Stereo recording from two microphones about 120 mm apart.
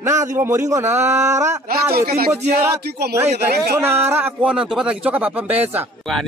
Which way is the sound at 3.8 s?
20° right (ahead or behind).